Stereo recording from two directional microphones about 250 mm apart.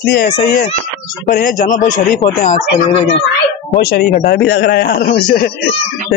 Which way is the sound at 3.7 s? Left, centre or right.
Left.